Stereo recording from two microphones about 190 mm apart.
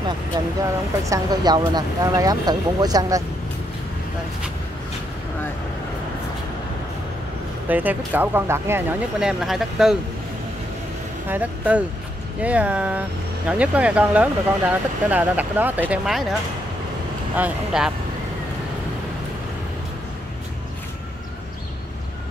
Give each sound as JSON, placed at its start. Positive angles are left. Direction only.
{"t": 0.6, "sound": "speech", "side_deg": -15}
{"t": 7.6, "sound": "speech", "side_deg": -10}
{"t": 11.2, "sound": "speech", "side_deg": -10}
{"t": 17.4, "sound": "speech", "side_deg": -5}